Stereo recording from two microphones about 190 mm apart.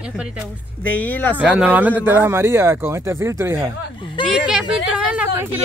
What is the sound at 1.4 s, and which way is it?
Speech, 5° right (ahead or behind).